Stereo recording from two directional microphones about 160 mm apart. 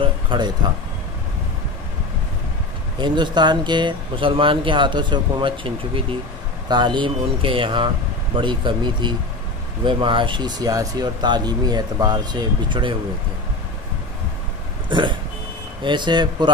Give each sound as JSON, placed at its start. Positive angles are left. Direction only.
{"t": 0.0, "sound": "a sound", "side_deg": -30}
{"t": 3.0, "sound": "speech", "side_deg": -30}
{"t": 14.9, "sound": "vehicle", "side_deg": -30}
{"t": 15.8, "sound": "speech", "side_deg": -30}